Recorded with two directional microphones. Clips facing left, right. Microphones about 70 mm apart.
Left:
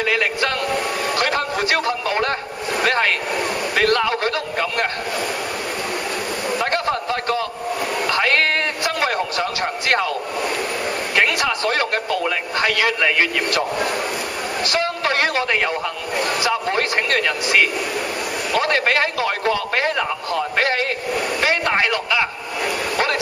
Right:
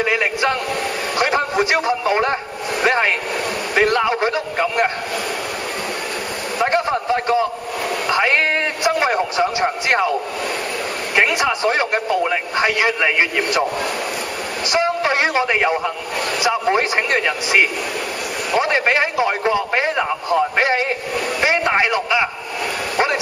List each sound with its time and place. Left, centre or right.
0.0 s a sound: centre
1.1 s a man's voice: centre
6.6 s a man's voice: centre
8.1 s a sound: centre
11.1 s speech: centre
14.7 s speech: centre